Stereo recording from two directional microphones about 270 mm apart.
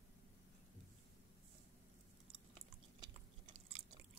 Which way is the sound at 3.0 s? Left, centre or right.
Centre.